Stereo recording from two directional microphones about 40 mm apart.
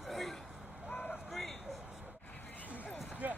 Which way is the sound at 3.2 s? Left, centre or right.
Right.